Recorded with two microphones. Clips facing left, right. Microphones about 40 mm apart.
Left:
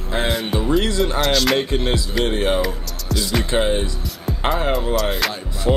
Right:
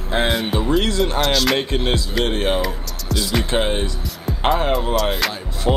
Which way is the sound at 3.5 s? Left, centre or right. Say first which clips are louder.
Left 3 dB; centre.